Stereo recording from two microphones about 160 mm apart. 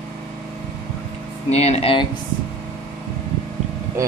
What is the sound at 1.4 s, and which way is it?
Speech, 40° left (ahead or behind).